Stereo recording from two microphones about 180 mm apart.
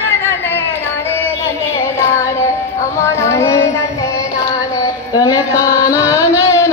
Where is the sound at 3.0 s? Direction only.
15° left (ahead or behind).